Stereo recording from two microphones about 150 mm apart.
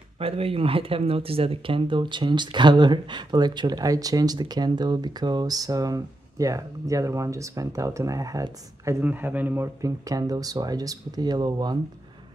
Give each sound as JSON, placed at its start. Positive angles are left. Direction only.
{"t": 0.2, "sound": "speech", "side_deg": -40}
{"t": 9.0, "sound": "speech", "side_deg": -10}